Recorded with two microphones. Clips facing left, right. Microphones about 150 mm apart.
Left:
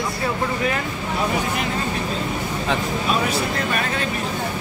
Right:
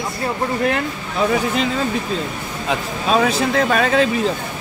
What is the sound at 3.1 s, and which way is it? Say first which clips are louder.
Speech: right 7 dB; 90° right.